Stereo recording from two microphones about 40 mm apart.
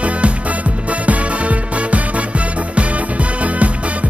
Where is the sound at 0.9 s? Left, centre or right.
Right.